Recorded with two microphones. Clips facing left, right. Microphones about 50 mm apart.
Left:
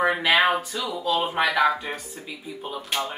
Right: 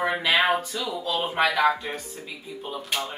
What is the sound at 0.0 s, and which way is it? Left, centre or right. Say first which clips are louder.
Speech: left 2 dB; centre.